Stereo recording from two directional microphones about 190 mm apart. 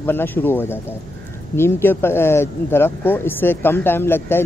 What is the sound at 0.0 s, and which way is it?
A man's voice, 10° left (ahead or behind).